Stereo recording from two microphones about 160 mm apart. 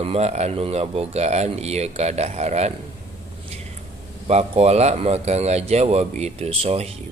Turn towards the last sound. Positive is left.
turn(degrees=-40)  # may be behind; listen again after turning